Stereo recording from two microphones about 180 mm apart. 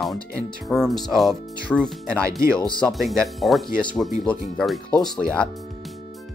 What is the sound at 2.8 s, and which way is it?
Speech, centre (ahead or behind).